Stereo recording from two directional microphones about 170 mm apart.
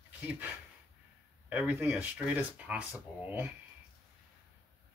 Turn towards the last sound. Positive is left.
turn(degrees=-10)  # may be behind; listen again after turning